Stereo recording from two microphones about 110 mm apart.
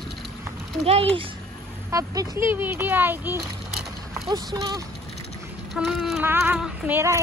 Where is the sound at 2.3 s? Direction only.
20° right (ahead or behind).